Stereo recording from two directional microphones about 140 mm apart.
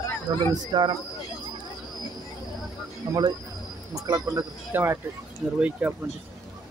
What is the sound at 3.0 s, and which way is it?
Speech, 30° right (ahead or behind).